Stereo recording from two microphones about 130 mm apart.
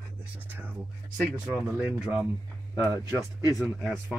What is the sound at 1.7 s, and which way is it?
Speech, 10° right (ahead or behind).